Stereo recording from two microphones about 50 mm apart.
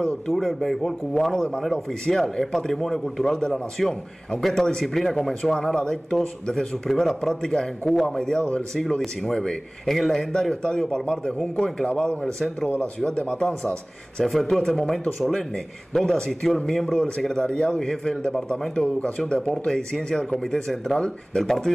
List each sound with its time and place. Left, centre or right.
0.3 s speech: centre
12.6 s speech: left
13.0 s speech: left
13.4 s speech: centre
18.9 s speech: left; by 21.7 s centre